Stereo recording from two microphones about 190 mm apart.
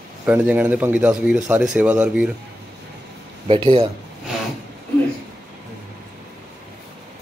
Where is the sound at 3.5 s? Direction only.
30° right (ahead or behind).